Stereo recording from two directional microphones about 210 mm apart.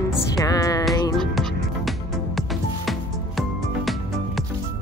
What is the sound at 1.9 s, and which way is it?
Music, centre (ahead or behind).